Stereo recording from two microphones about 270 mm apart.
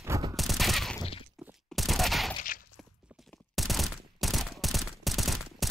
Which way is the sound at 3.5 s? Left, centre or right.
Centre.